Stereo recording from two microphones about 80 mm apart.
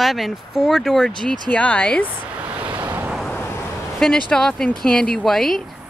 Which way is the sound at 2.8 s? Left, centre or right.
Right.